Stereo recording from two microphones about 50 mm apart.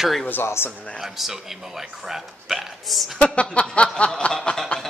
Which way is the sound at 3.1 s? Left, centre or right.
Centre.